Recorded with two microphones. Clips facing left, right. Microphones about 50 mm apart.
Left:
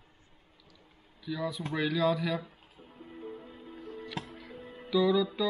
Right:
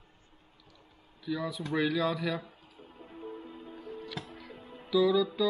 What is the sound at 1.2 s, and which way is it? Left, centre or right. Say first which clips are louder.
Speech: even; centre.